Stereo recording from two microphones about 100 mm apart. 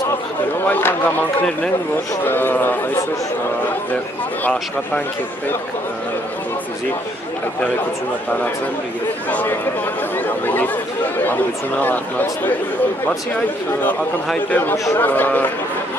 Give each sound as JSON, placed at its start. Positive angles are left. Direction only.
{"t": 0.7, "sound": "a man's voice", "side_deg": 20}
{"t": 2.2, "sound": "a man's voice", "side_deg": 20}
{"t": 9.3, "sound": "a man's voice", "side_deg": 15}
{"t": 11.8, "sound": "speech", "side_deg": 15}
{"t": 14.5, "sound": "a man's voice", "side_deg": 20}